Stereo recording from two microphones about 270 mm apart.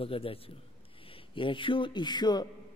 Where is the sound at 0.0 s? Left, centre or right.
Left.